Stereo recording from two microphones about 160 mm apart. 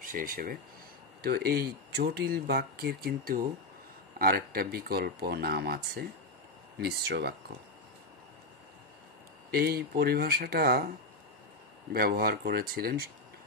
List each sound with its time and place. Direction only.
0.0 s speech: 60° right (ahead or behind)
1.2 s speech: 80° right
9.5 s speech: 75° right (ahead or behind)
11.9 s speech: 70° right (ahead or behind)